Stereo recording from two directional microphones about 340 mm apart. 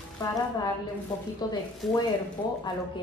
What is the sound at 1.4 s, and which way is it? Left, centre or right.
Speech, centre.